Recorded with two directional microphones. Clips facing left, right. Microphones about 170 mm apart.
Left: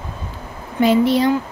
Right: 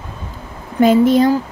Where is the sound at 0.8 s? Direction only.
45° right (ahead or behind).